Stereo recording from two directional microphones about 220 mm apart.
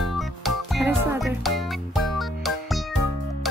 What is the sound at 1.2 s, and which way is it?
Music, centre (ahead or behind).